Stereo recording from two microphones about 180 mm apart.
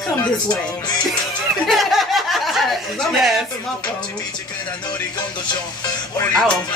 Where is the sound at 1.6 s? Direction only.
Centre (ahead or behind).